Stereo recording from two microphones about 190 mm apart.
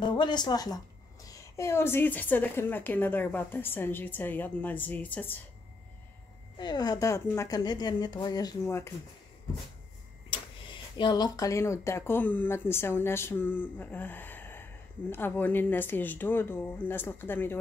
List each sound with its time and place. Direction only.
0.0 s a woman's voice: 25° left (ahead or behind)
6.6 s a woman's voice: 20° left (ahead or behind)
10.3 s speech: 25° left (ahead or behind)